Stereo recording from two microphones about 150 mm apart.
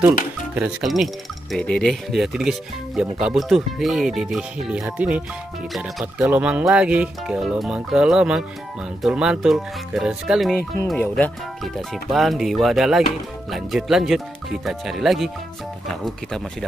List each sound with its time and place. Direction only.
0.6 s speech: 5° right (ahead or behind)
11.0 s speech: 10° left (ahead or behind)